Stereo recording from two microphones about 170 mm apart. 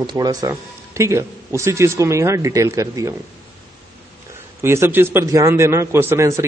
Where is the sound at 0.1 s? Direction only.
20° right (ahead or behind).